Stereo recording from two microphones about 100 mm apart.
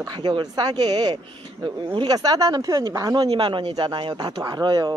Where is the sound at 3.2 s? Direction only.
55° right (ahead or behind).